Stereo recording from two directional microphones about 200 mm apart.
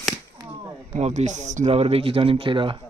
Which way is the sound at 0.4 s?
15° right (ahead or behind).